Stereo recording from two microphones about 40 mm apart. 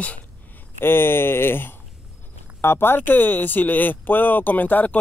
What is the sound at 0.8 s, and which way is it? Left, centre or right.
Speech, left.